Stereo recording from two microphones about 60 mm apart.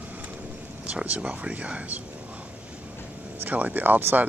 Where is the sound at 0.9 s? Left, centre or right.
Right.